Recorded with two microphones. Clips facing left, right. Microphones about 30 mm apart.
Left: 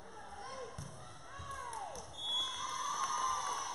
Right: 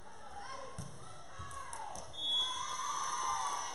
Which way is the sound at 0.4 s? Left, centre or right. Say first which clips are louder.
Right 1 dB; centre.